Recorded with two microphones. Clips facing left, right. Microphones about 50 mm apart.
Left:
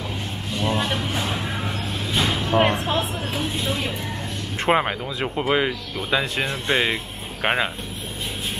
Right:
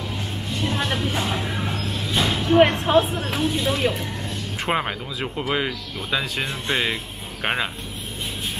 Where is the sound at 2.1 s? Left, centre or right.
Centre.